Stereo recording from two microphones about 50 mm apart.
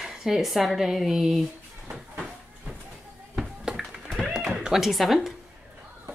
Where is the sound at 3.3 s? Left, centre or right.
Centre.